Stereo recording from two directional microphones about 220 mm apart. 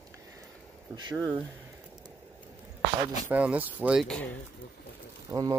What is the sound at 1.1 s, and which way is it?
Speech, 10° right (ahead or behind).